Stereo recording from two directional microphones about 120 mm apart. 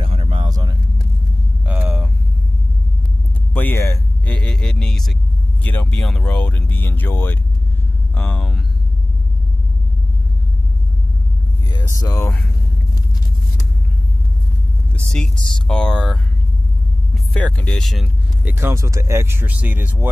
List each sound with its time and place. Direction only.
0.0 s a sound: 50° right (ahead or behind)
0.5 s vehicle: 35° right (ahead or behind)
1.7 s hum: 10° right (ahead or behind)
3.5 s a sound: 20° left (ahead or behind)
4.3 s music: 5° left (ahead or behind)
5.6 s speech: 15° left (ahead or behind)
8.4 s speech: centre (ahead or behind)
11.9 s speech: 25° left (ahead or behind)
15.0 s speech: 5° left (ahead or behind)
18.0 s speech: 15° right (ahead or behind)